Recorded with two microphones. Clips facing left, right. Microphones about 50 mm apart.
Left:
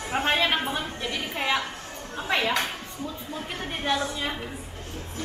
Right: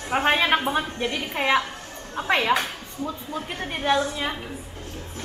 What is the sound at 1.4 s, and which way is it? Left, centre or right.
A woman's voice, centre.